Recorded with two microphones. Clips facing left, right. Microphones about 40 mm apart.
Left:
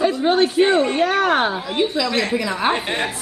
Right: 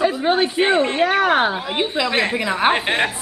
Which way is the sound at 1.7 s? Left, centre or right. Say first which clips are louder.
Even; right.